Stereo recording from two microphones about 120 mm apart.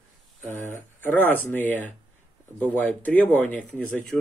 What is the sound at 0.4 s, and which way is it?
Speech, 20° left (ahead or behind).